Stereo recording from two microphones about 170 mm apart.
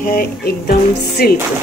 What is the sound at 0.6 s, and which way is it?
Speech, 60° left (ahead or behind).